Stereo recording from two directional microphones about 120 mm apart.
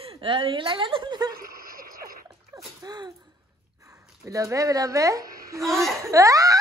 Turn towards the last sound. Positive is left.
turn(degrees=-30)  # may be behind; listen again after turning